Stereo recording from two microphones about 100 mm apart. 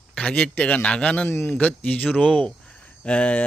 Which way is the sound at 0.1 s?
10° left (ahead or behind).